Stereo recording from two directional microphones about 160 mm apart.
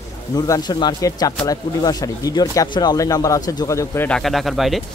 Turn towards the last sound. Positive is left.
turn(degrees=0)  # may be behind; listen again after turning